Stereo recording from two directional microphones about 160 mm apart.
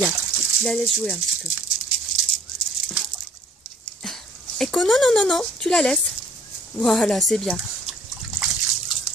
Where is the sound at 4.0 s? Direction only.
5° left (ahead or behind).